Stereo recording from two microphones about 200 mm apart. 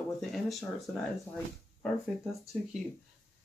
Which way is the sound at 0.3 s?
Centre (ahead or behind).